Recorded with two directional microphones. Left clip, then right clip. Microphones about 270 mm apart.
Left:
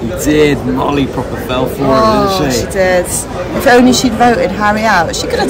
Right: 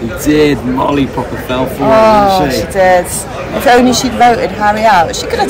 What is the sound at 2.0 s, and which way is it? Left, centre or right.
A woman's voice, centre.